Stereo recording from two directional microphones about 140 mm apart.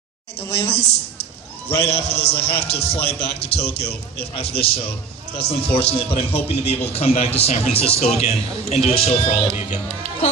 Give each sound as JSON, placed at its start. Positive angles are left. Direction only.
{"t": 0.5, "sound": "a man's voice", "side_deg": 45}
{"t": 1.9, "sound": "a man's voice", "side_deg": 45}